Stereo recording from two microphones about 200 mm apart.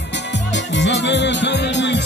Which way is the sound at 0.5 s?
60° left (ahead or behind).